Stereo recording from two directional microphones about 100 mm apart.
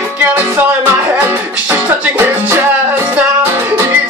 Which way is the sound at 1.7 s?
25° right (ahead or behind).